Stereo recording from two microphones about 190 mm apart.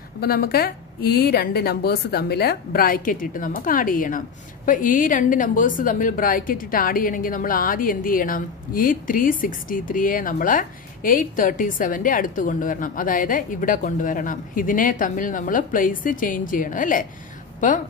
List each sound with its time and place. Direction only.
0.2 s a woman's voice: 50° left (ahead or behind)